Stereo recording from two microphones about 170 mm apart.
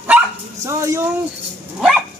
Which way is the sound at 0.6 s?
15° right (ahead or behind).